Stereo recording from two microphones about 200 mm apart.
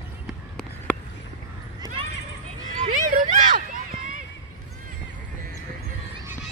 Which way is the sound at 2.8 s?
40° right (ahead or behind).